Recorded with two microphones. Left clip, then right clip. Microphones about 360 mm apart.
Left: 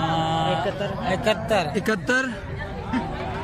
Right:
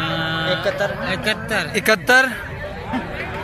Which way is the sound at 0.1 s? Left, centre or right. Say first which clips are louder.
Right 2 dB; left.